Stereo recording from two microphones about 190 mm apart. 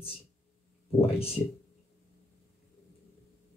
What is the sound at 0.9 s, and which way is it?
Speech, 30° left (ahead or behind).